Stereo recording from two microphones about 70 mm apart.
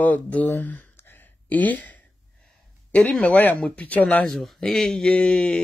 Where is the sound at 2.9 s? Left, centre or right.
Centre.